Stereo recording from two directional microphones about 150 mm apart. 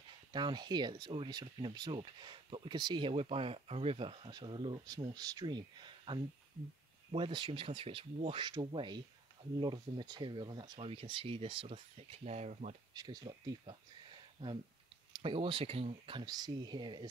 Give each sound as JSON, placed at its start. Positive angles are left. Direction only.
{"t": 0.3, "sound": "speech", "side_deg": -30}
{"t": 12.9, "sound": "speech", "side_deg": -25}
{"t": 15.1, "sound": "speech", "side_deg": -35}